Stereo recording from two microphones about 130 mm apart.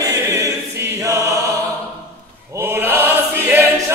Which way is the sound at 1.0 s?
25° right (ahead or behind).